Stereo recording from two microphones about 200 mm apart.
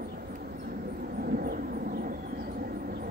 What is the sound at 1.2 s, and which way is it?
Vehicle, 50° right (ahead or behind).